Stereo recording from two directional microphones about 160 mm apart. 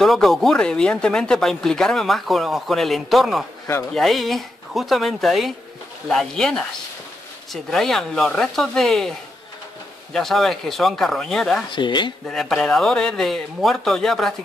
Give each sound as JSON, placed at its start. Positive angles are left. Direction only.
{"t": 0.0, "sound": "speech", "side_deg": 0}
{"t": 10.1, "sound": "speech", "side_deg": 0}
{"t": 11.7, "sound": "speech", "side_deg": 30}
{"t": 12.3, "sound": "speech", "side_deg": 0}